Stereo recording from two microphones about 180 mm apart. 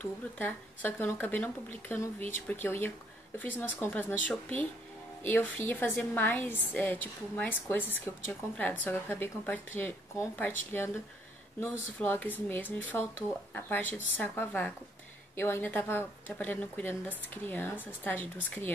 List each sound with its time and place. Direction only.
0.0 s a woman's voice: 10° left (ahead or behind)
11.6 s a woman's voice: 10° left (ahead or behind)